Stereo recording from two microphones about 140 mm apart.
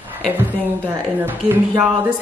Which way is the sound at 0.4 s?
15° right (ahead or behind).